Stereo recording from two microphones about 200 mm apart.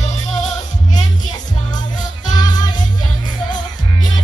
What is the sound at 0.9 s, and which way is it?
Music, 20° left (ahead or behind).